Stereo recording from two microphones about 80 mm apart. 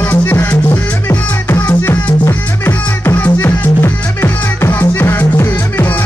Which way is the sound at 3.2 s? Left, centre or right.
Left.